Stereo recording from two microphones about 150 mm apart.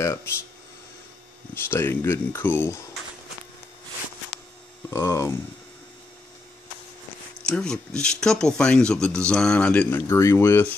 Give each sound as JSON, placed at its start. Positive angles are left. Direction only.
{"t": 0.0, "sound": "speech", "side_deg": 20}
{"t": 1.5, "sound": "speech", "side_deg": 15}
{"t": 4.8, "sound": "speech", "side_deg": 20}
{"t": 7.4, "sound": "speech", "side_deg": 5}